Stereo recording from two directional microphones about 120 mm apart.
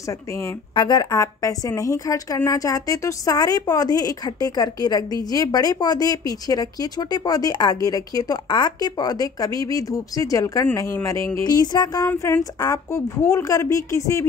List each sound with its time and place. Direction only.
0.7 s a woman's voice: 40° left (ahead or behind)
1.1 s a woman's voice: 25° left (ahead or behind)
11.5 s a woman's voice: 35° left (ahead or behind)